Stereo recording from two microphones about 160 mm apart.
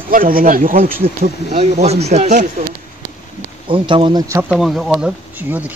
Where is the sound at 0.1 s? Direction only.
60° right (ahead or behind).